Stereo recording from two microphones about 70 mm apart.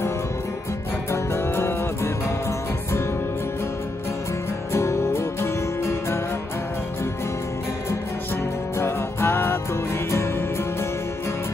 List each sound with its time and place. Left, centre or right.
1.1 s music: left
4.7 s music: left
8.7 s music: left